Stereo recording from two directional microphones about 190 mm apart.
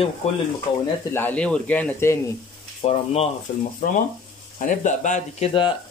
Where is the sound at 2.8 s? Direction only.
30° left (ahead or behind).